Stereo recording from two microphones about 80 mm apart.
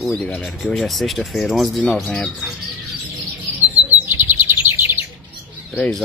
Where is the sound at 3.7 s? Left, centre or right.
Right.